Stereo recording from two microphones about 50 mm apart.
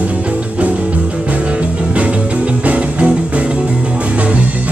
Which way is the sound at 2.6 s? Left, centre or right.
Right.